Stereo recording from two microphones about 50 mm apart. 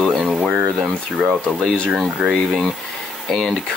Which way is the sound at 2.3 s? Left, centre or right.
Centre.